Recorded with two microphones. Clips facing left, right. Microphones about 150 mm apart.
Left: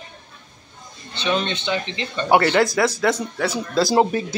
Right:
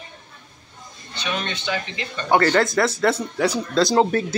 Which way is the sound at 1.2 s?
25° left (ahead or behind).